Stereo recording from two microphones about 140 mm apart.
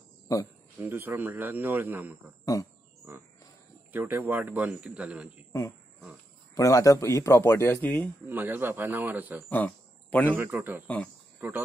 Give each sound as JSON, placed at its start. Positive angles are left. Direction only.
{"t": 0.3, "sound": "speech", "side_deg": 25}
{"t": 0.7, "sound": "speech", "side_deg": -15}
{"t": 3.9, "sound": "speech", "side_deg": -15}
{"t": 6.5, "sound": "a man's voice", "side_deg": 25}
{"t": 8.3, "sound": "speech", "side_deg": -15}
{"t": 9.5, "sound": "speech", "side_deg": 10}
{"t": 10.3, "sound": "speech", "side_deg": -15}